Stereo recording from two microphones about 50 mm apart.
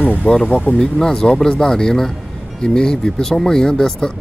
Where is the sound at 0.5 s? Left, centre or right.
Left.